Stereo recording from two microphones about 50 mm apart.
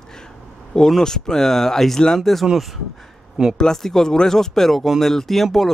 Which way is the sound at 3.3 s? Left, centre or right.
Centre.